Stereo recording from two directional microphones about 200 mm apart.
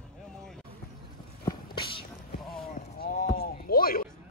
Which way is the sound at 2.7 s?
50° left (ahead or behind).